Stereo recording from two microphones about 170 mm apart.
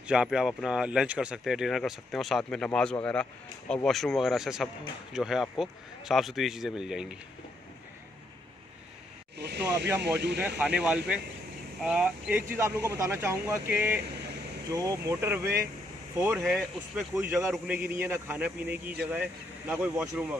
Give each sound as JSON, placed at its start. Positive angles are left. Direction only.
{"t": 0.0, "sound": "speech", "side_deg": -5}
{"t": 9.4, "sound": "snake", "side_deg": -80}
{"t": 10.0, "sound": "speech", "side_deg": -80}
{"t": 10.8, "sound": "speech", "side_deg": -5}
{"t": 15.4, "sound": "speech", "side_deg": -65}
{"t": 16.2, "sound": "speech", "side_deg": -15}
{"t": 17.7, "sound": "speech", "side_deg": -60}
{"t": 18.0, "sound": "speech", "side_deg": -15}